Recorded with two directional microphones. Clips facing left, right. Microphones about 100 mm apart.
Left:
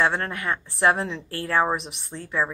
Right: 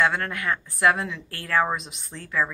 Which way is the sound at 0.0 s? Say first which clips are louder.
Even; 30° left (ahead or behind).